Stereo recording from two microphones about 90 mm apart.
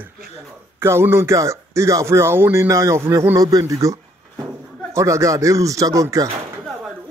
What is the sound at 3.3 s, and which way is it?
Speech, 40° right (ahead or behind).